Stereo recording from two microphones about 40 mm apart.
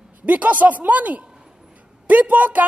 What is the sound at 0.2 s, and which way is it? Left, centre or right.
A woman's voice, right.